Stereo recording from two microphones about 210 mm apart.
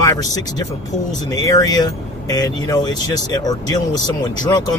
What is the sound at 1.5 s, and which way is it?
Speech, 15° left (ahead or behind).